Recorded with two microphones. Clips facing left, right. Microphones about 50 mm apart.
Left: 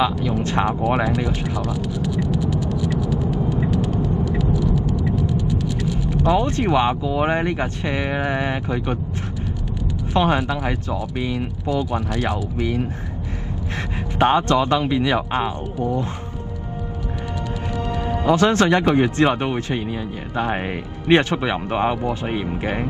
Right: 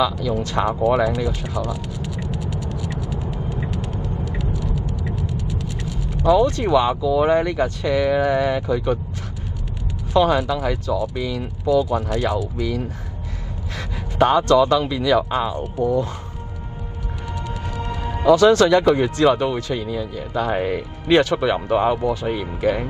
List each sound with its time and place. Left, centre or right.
0.2 s speech: left
1.6 s speech: right
2.1 s mechanisms: right
3.7 s vehicle: right
5.1 s mechanisms: right
6.2 s speech: left
10.1 s speech: left
14.1 s speech: left
18.0 s speech: left